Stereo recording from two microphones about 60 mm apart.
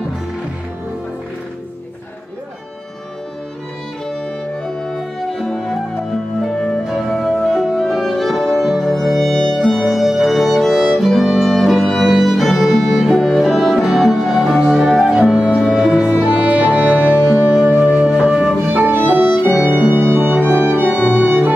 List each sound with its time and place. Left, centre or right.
4.6 s music: centre
11.4 s violin: centre
15.7 s music: centre
16.3 s music: right
18.7 s music: right